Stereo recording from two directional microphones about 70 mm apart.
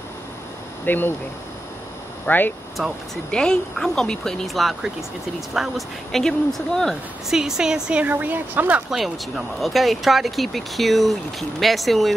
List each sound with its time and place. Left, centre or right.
0.8 s speech: left
2.2 s speech: left
2.8 s speech: centre
3.3 s speech: centre
7.2 s speech: centre; by 8.8 s right
8.9 s speech: centre